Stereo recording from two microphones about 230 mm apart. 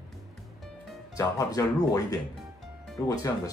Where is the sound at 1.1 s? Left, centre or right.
Centre.